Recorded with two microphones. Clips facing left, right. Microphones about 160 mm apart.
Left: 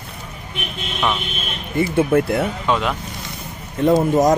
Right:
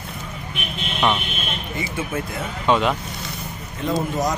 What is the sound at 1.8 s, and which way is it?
Speech, 60° left (ahead or behind).